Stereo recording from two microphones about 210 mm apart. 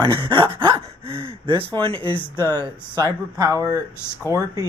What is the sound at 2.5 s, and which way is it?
Speech, 20° right (ahead or behind).